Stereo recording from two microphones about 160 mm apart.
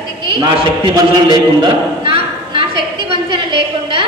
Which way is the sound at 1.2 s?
30° right (ahead or behind).